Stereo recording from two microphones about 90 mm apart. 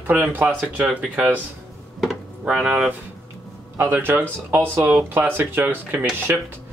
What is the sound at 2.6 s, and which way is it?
Speech, 15° right (ahead or behind).